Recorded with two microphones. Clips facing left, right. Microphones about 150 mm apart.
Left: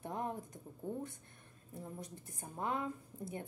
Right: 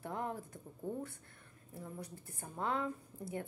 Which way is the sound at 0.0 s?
20° left (ahead or behind).